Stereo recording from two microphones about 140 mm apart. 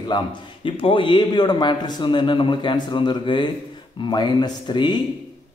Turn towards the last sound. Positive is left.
turn(degrees=35)  # may be behind; listen again after turning